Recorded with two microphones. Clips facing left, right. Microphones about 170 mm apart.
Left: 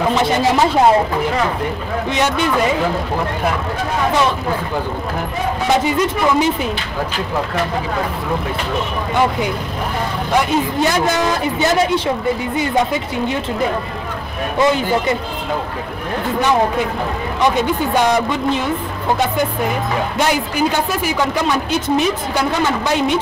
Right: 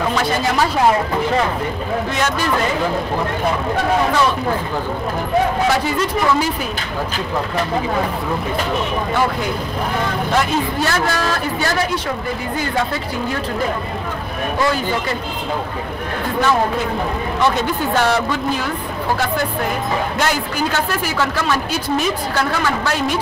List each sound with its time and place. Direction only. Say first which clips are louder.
0.1 s speech: left 3 dB; 25° left (ahead or behind)
5.7 s speech: left 2 dB; 20° left (ahead or behind)
10.3 s speech: left 4 dB; 15° left (ahead or behind)
14.6 s speech: left 5 dB; 20° left (ahead or behind)
17.4 s speech: left 2 dB; 15° left (ahead or behind)
20.2 s speech: left 3 dB; 15° left (ahead or behind)